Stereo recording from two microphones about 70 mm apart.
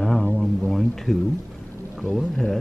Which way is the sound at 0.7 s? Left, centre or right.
Centre.